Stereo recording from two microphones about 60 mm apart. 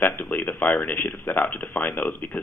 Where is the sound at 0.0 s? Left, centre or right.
Left.